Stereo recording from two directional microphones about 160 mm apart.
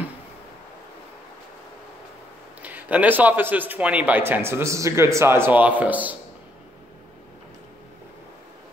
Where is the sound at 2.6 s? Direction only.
10° right (ahead or behind).